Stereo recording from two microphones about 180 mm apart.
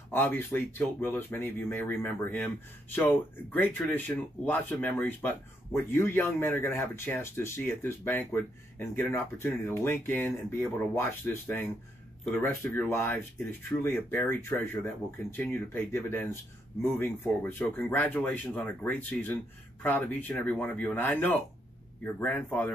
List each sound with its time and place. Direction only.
0.1 s speech: 10° left (ahead or behind)